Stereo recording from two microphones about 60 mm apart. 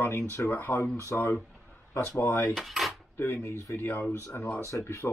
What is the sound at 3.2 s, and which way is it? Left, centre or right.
Speech, left.